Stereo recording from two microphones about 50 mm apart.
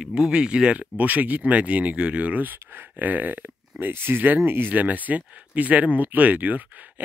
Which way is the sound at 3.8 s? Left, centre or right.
Right.